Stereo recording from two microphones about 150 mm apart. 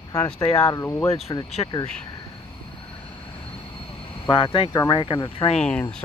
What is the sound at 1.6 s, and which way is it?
Speech, 30° left (ahead or behind).